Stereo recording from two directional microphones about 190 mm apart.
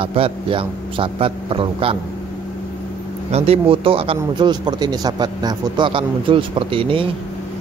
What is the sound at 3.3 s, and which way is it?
Speech, 30° right (ahead or behind).